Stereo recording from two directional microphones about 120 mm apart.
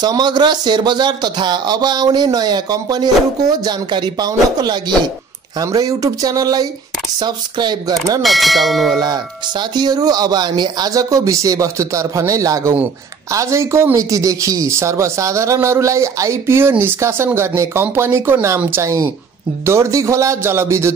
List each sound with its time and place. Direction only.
0.0 s speech: 35° right (ahead or behind)
8.2 s speech: centre (ahead or behind)
9.0 s speech: 35° right (ahead or behind)